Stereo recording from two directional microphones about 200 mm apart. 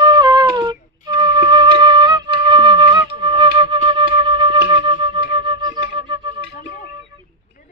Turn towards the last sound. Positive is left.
turn(degrees=-25)  # may be behind; listen again after turning